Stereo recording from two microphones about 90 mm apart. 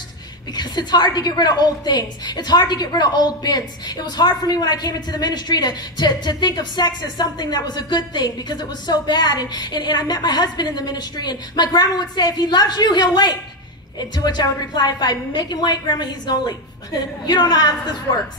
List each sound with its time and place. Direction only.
0.6 s a woman's voice: 50° left (ahead or behind)